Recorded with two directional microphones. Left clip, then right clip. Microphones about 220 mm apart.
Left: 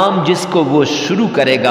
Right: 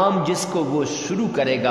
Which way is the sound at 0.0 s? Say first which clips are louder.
Left 6 dB; 35° left (ahead or behind).